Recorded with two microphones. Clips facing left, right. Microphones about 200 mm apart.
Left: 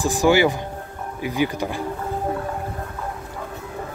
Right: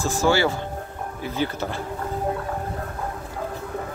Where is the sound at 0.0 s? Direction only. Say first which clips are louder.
Left 4 dB; 15° left (ahead or behind).